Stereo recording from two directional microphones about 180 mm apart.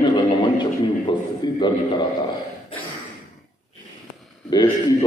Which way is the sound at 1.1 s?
25° left (ahead or behind).